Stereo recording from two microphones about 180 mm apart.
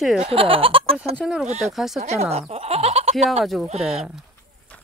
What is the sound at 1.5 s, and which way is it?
Speech, 40° right (ahead or behind).